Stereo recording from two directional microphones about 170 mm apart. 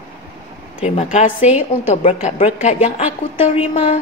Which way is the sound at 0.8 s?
40° left (ahead or behind).